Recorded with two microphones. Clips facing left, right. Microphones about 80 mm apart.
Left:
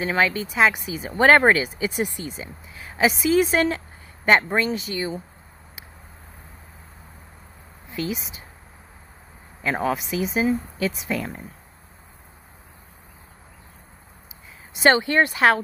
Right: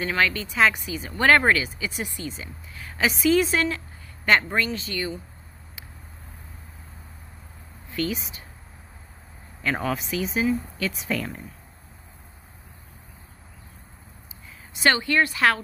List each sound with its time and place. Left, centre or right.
0.0 s speech: left
3.4 s speech: left
7.9 s speech: centre
9.6 s a woman's voice: centre
14.7 s speech: left